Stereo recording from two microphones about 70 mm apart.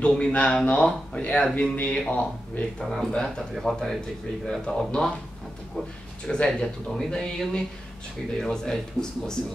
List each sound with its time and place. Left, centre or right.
0.0 s speech: centre